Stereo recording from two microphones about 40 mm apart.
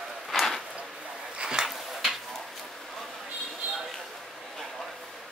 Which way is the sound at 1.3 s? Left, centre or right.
Centre.